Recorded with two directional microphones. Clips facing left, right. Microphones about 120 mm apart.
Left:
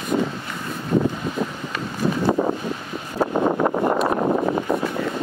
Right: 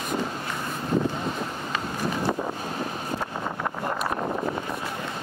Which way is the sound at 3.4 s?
50° left (ahead or behind).